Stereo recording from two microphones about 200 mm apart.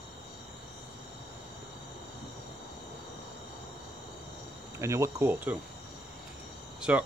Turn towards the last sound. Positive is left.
turn(degrees=-5)  # may be behind; listen again after turning